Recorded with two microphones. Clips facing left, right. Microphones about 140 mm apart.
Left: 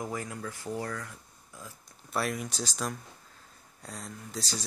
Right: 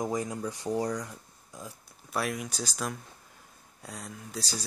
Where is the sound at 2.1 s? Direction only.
Centre (ahead or behind).